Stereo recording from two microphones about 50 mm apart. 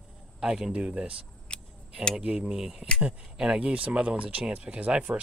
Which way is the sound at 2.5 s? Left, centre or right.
Centre.